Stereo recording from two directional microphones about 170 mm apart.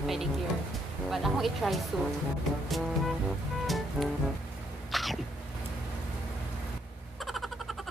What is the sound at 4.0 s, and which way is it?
Speech, 5° right (ahead or behind).